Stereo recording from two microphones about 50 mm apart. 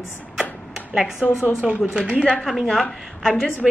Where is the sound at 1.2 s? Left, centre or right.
Left.